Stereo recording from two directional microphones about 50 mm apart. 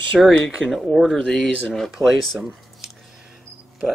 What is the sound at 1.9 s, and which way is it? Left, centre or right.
Speech, centre.